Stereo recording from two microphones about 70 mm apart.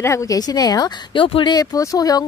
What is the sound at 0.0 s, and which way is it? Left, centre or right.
A woman's voice, left.